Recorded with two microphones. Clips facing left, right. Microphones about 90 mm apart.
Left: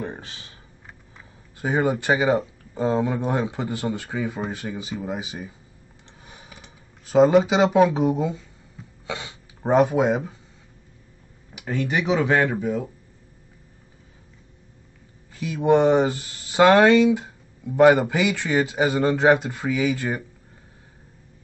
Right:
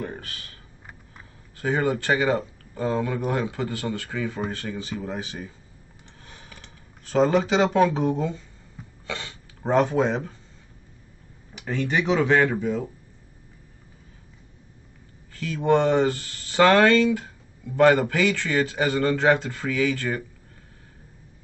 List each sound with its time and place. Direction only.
0.0 s a sound: 20° left (ahead or behind)
1.6 s speech: 15° left (ahead or behind)
11.5 s speech: 5° left (ahead or behind)
15.3 s speech: 15° left (ahead or behind)